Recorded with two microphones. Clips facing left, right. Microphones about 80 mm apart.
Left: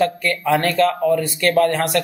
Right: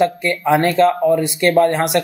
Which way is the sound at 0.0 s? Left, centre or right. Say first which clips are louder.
Right 2 dB; right.